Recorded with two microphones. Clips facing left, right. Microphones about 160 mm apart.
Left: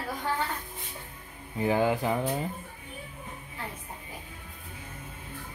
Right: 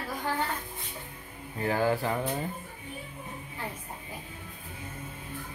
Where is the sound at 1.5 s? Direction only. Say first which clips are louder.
Left 2 dB; 15° left (ahead or behind).